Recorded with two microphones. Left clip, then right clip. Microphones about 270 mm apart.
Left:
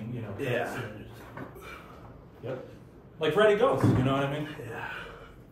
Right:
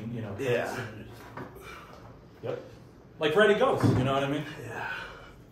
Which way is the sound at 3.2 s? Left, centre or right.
Right.